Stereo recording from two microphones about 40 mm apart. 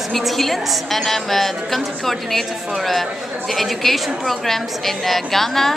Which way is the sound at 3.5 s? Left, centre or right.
Centre.